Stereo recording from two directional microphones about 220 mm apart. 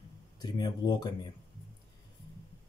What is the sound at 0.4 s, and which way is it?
Speech, 20° left (ahead or behind).